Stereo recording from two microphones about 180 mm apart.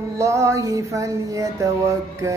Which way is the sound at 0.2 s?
15° right (ahead or behind).